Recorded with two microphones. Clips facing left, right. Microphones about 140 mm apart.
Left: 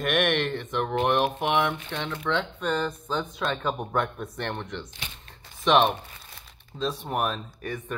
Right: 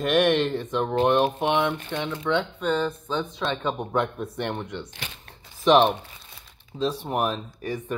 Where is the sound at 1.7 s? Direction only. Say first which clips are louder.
Right 3 dB; 5° right (ahead or behind).